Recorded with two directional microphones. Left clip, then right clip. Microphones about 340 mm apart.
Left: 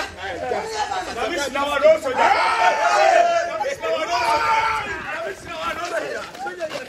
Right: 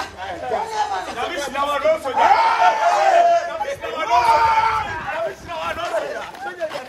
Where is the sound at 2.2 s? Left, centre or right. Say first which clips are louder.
Right 3 dB; right.